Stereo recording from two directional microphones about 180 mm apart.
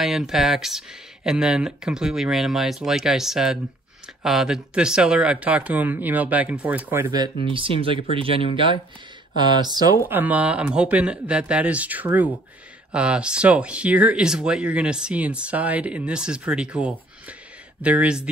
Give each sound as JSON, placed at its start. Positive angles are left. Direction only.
{"t": 0.0, "sound": "speech", "side_deg": 0}
{"t": 7.5, "sound": "speech", "side_deg": -30}
{"t": 10.0, "sound": "speech", "side_deg": -10}